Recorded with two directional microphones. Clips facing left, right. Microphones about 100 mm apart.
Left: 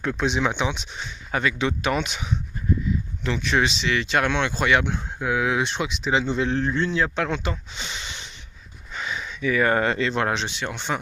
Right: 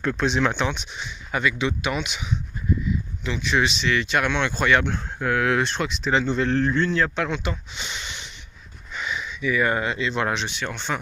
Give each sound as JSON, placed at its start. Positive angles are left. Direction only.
{"t": 0.0, "sound": "speech", "side_deg": 10}
{"t": 0.9, "sound": "speech", "side_deg": 35}
{"t": 3.4, "sound": "speech", "side_deg": 35}
{"t": 7.2, "sound": "speech", "side_deg": 35}
{"t": 8.9, "sound": "a sound", "side_deg": 35}
{"t": 10.1, "sound": "speech", "side_deg": 35}